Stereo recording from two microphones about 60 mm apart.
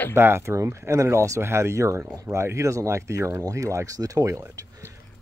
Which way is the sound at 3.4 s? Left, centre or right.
Right.